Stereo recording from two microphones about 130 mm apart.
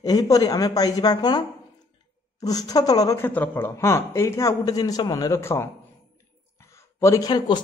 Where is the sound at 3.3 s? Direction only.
15° left (ahead or behind).